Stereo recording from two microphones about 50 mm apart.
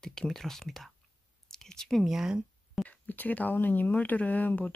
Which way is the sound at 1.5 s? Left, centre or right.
Centre.